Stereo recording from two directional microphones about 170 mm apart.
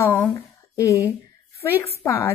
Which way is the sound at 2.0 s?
15° left (ahead or behind).